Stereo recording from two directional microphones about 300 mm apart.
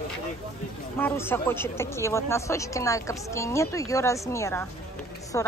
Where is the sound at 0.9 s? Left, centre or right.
Centre.